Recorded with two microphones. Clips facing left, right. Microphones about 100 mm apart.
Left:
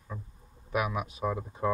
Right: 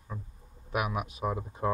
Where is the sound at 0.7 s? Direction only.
10° right (ahead or behind).